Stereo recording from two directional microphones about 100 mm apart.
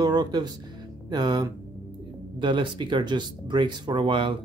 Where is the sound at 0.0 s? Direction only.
45° right (ahead or behind).